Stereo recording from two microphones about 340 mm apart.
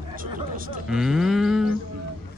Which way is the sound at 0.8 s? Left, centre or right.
Centre.